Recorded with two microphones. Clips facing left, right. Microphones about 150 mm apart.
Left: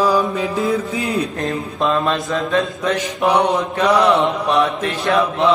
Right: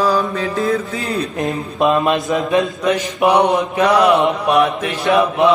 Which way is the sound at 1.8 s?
15° right (ahead or behind).